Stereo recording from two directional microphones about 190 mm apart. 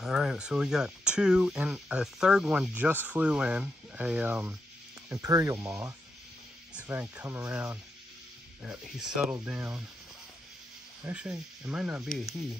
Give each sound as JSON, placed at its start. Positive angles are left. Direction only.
{"t": 0.0, "sound": "speech", "side_deg": -5}
{"t": 11.1, "sound": "speech", "side_deg": -5}